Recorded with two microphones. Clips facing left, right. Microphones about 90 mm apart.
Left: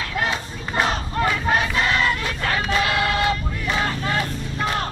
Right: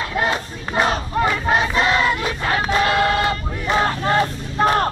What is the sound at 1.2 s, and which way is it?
Crowd, 15° right (ahead or behind).